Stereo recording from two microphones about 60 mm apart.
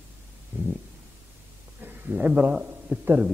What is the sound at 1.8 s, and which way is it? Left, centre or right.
Speech, right.